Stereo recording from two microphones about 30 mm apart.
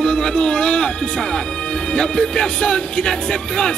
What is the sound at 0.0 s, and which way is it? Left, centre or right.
Speech, left.